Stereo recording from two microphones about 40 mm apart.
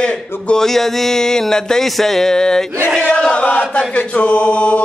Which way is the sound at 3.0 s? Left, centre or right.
Left.